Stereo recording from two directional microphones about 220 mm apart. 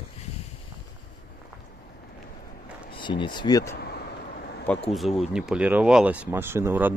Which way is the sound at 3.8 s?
45° left (ahead or behind).